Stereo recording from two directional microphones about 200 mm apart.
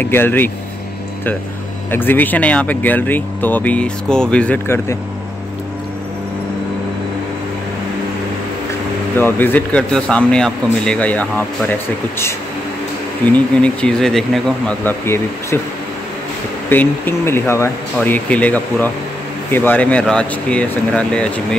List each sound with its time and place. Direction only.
0.0 s speech: 10° left (ahead or behind)
1.9 s speech: 10° left (ahead or behind)
9.1 s speech: 10° left (ahead or behind)
13.2 s speech: 5° left (ahead or behind)
16.6 s speech: 10° left (ahead or behind)